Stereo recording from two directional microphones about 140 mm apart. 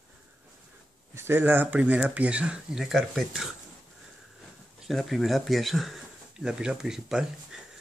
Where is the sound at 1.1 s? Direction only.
15° right (ahead or behind); by 3.4 s centre (ahead or behind).